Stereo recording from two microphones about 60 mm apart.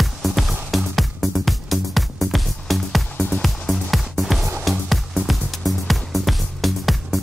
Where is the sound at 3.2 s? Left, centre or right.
Centre.